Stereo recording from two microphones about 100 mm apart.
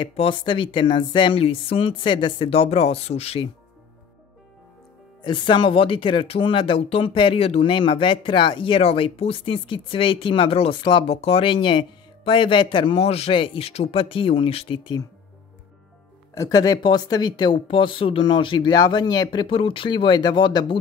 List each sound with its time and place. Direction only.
0.0 s speech: 65° left (ahead or behind)
1.4 s speech: 65° left (ahead or behind); by 3.4 s 90° left
5.2 s speech: 55° left (ahead or behind); by 7.7 s 85° left
7.7 s speech: 55° left (ahead or behind)
13.0 s speech: 90° left; by 15.0 s 60° left (ahead or behind)
16.3 s speech: 35° left (ahead or behind); by 20.7 s 55° left (ahead or behind)